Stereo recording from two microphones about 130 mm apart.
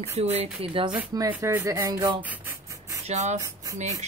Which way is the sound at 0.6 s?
45° right (ahead or behind).